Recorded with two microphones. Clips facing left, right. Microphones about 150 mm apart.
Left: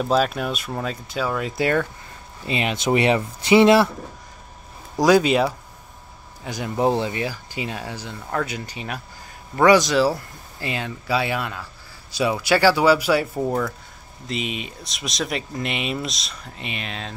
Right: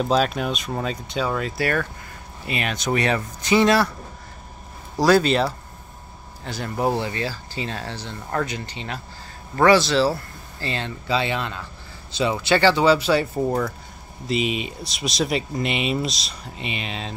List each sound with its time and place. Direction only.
0.1 s speech: 5° left (ahead or behind)
1.6 s speech: 20° left (ahead or behind)
4.9 s speech: 15° left (ahead or behind)